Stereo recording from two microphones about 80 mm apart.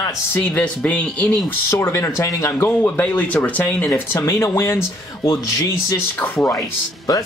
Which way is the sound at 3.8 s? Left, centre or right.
Left.